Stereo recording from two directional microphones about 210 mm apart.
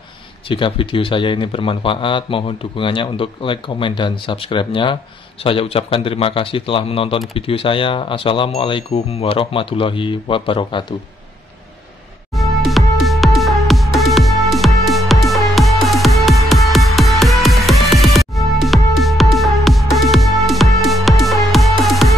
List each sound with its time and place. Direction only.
0.5 s a man's voice: 25° left (ahead or behind)
12.4 s music: centre (ahead or behind)